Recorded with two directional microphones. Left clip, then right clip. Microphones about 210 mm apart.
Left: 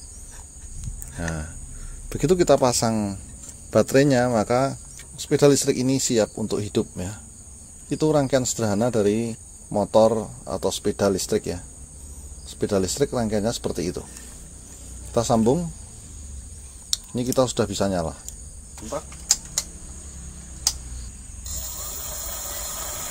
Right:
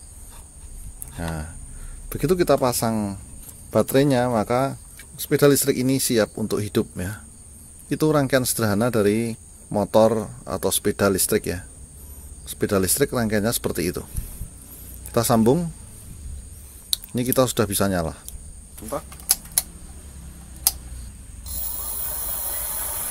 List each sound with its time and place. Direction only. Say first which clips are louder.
1.1 s speech: even; centre (ahead or behind); by 14.0 s 15° right (ahead or behind)
15.1 s a man's voice: right 1 dB; 20° right (ahead or behind)
16.9 s speech: right 1 dB; 15° right (ahead or behind)